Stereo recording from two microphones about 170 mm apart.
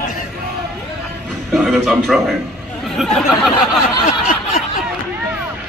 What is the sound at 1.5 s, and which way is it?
A man's voice, centre (ahead or behind).